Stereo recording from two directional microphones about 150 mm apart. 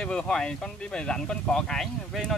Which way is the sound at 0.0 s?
5° left (ahead or behind).